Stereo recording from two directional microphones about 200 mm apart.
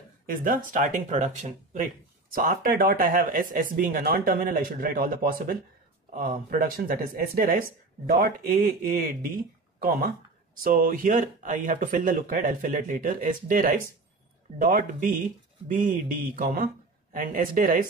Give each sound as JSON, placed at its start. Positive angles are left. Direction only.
{"t": 0.3, "sound": "speech", "side_deg": -45}